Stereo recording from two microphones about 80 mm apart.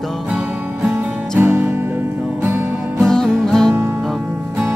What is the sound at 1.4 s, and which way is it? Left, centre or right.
Music, right.